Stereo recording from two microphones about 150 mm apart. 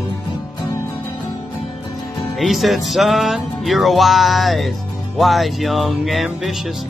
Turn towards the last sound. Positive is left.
turn(degrees=0)  # may be behind; listen again after turning